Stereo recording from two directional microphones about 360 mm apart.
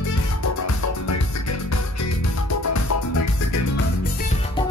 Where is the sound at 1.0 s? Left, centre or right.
Left.